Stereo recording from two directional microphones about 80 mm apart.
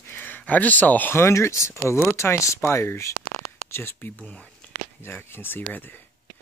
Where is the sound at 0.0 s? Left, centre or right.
Left.